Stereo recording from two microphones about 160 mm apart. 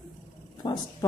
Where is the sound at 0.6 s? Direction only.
25° left (ahead or behind).